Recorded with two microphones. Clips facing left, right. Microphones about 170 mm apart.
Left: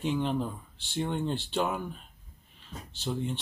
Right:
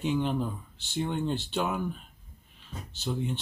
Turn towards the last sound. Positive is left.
turn(degrees=0)  # may be behind; listen again after turning